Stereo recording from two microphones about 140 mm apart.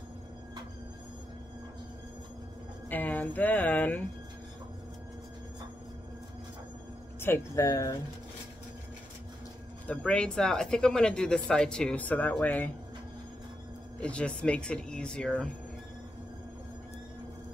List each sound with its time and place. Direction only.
2.9 s speech: 10° left (ahead or behind)
7.2 s speech: 20° left (ahead or behind)
9.8 s speech: 5° left (ahead or behind)
14.0 s speech: 10° left (ahead or behind)